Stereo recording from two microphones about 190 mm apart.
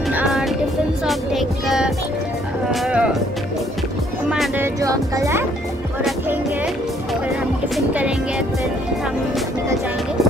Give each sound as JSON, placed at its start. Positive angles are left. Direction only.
{"t": 0.1, "sound": "music", "side_deg": -5}
{"t": 4.3, "sound": "music", "side_deg": -5}
{"t": 4.8, "sound": "music", "side_deg": -20}
{"t": 7.7, "sound": "speech", "side_deg": -5}